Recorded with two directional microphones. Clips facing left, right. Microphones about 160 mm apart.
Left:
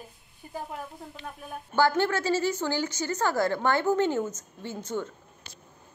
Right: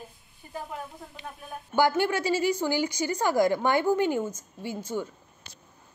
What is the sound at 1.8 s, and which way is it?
A woman's voice, 15° right (ahead or behind).